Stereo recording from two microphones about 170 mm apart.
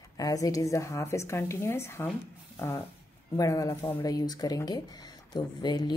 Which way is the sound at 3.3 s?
20° left (ahead or behind).